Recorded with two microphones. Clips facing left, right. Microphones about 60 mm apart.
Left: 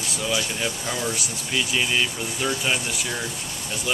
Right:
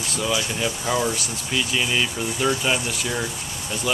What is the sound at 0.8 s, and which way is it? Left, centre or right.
Speech, centre.